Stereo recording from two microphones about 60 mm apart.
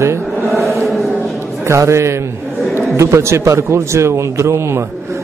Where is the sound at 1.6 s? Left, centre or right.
Right.